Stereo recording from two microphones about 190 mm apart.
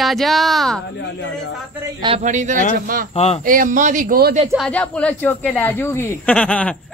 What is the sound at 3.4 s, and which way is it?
Speech, 45° right (ahead or behind).